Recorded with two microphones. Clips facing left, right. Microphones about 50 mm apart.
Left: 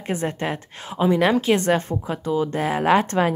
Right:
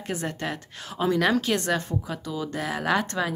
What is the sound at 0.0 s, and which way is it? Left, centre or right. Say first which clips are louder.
Speech: left 5 dB; left.